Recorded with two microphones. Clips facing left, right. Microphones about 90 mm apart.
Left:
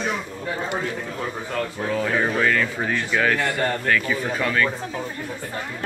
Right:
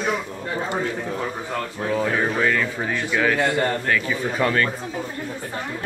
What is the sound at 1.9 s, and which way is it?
Speech, 15° right (ahead or behind).